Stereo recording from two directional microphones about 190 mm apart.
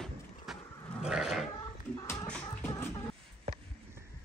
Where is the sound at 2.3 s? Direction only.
5° left (ahead or behind).